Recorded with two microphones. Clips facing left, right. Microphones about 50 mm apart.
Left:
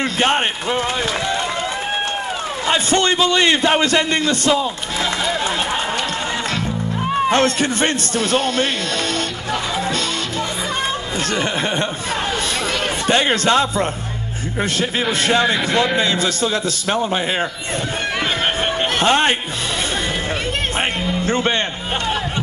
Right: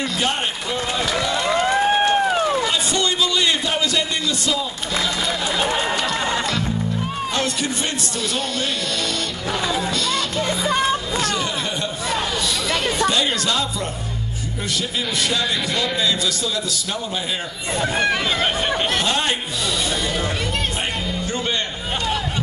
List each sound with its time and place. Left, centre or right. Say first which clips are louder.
0.0 s a man's voice: left 5 dB; left
1.6 s run: right 5 dB; right
2.7 s a man's voice: left 5 dB; left
7.2 s a man's voice: left 7 dB; left
11.1 s a man's voice: left 1 dB; left
13.1 s a man's voice: left 6 dB; left
18.9 s a man's voice: left 6 dB; left
21.3 s music: left 7 dB; left